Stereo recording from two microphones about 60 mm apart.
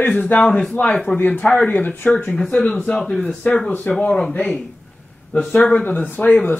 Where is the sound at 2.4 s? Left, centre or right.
Centre.